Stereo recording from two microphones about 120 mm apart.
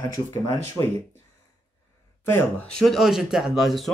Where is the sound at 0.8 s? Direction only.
15° right (ahead or behind).